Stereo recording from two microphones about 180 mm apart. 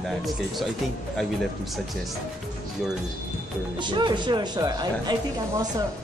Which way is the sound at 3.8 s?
25° right (ahead or behind).